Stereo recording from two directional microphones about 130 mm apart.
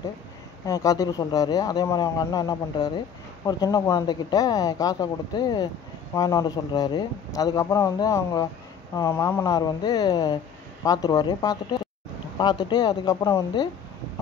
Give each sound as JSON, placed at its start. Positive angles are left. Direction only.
{"t": 0.7, "sound": "speech", "side_deg": 25}
{"t": 9.1, "sound": "speech", "side_deg": 15}
{"t": 9.4, "sound": "speech", "side_deg": 30}